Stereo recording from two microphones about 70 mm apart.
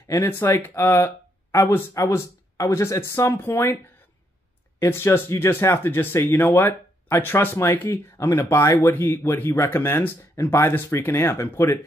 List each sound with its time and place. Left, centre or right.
0.2 s speech: left
4.7 s speech: left
8.9 s speech: left